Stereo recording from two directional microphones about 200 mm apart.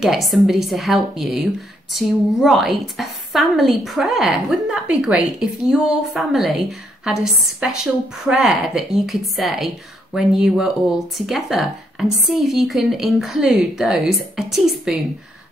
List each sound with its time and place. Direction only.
0.0 s speech: centre (ahead or behind)